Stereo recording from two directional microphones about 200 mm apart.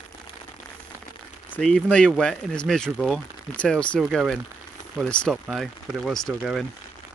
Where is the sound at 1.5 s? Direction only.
5° left (ahead or behind).